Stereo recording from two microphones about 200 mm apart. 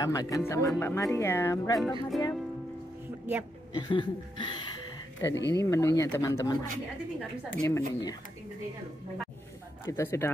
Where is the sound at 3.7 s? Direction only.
20° left (ahead or behind).